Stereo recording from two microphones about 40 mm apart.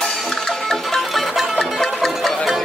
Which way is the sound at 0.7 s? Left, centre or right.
Centre.